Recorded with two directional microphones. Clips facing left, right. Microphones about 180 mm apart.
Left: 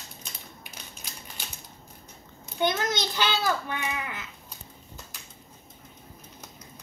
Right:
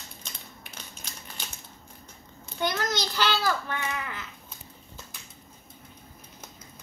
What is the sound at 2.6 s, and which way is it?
A child's voice, 20° left (ahead or behind).